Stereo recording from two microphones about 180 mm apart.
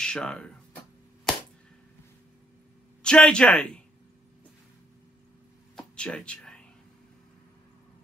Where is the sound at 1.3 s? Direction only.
Centre (ahead or behind).